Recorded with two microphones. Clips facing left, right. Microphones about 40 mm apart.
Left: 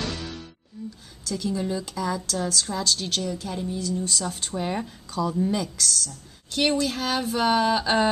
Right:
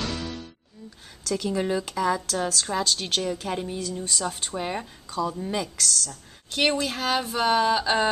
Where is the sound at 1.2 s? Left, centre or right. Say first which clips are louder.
Right 2 dB; right.